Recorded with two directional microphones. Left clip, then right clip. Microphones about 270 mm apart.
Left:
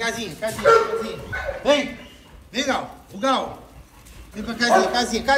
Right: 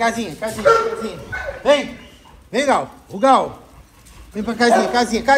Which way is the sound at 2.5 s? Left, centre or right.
Centre.